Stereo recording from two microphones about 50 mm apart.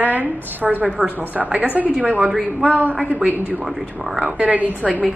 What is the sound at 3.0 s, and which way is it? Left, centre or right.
A woman's voice, right.